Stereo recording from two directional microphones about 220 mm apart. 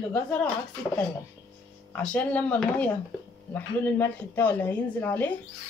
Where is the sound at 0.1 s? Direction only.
5° left (ahead or behind).